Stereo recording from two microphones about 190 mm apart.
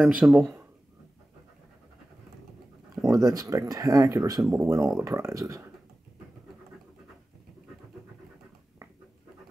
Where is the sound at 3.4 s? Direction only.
15° right (ahead or behind).